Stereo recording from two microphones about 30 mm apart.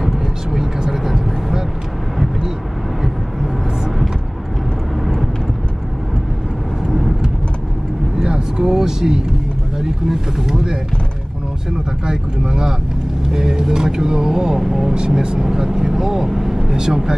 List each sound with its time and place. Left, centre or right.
0.0 s vehicle: centre
5.0 s vehicle: centre
6.9 s vehicle: centre
8.3 s a sound: right
9.8 s speech: centre
10.5 s speech: right
12.1 s speech: right
15.0 s speech: right
15.4 s speech: centre